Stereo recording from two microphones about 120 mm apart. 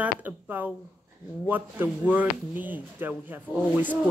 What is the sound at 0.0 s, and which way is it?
Speech, 15° right (ahead or behind).